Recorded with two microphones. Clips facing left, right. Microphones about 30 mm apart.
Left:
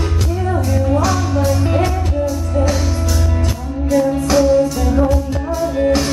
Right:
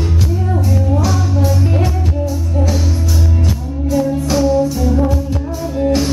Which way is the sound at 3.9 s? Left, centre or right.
Centre.